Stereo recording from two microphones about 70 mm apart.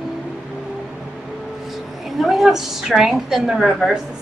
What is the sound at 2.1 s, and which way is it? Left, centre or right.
A woman's voice, centre.